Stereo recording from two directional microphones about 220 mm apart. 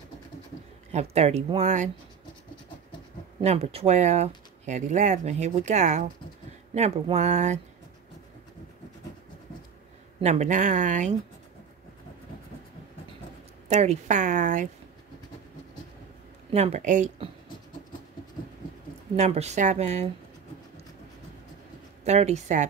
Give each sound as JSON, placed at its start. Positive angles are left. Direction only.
{"t": 0.9, "sound": "speech", "side_deg": -30}
{"t": 3.3, "sound": "speech", "side_deg": -30}
{"t": 10.2, "sound": "speech", "side_deg": -30}
{"t": 13.7, "sound": "speech", "side_deg": -30}
{"t": 16.5, "sound": "speech", "side_deg": -30}
{"t": 19.1, "sound": "speech", "side_deg": -30}
{"t": 22.0, "sound": "speech", "side_deg": -30}